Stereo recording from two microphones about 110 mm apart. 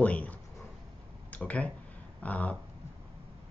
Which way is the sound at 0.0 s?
15° left (ahead or behind).